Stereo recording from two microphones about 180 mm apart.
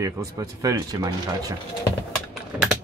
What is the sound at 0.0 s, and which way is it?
Speech, 20° right (ahead or behind).